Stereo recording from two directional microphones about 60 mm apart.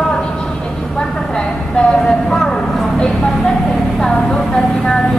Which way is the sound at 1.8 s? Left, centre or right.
Centre.